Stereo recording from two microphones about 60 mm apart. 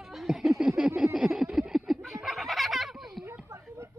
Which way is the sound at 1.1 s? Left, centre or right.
Centre.